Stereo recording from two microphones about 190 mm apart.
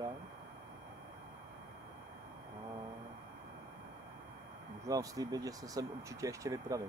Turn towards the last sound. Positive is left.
turn(degrees=-15)  # may be behind; listen again after turning